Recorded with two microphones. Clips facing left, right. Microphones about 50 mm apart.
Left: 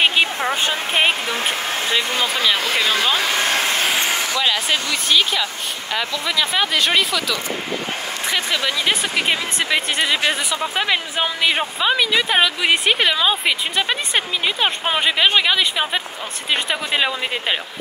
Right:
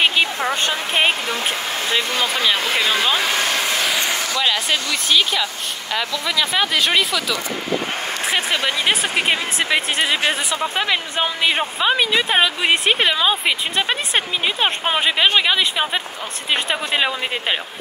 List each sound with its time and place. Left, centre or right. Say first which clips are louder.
0.2 s a sound: even; left
0.7 s speech: even; centre
3.3 s vehicle: left 1 dB; left
4.4 s speech: right 1 dB; centre
8.3 s speech: even; right
9.9 s speech: even; centre